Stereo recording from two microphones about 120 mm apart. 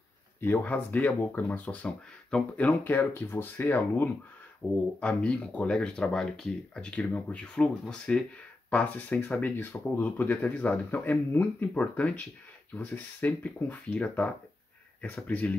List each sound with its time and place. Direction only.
0.5 s speech: 15° left (ahead or behind)